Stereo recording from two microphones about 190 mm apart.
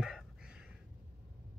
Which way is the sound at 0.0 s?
Centre (ahead or behind).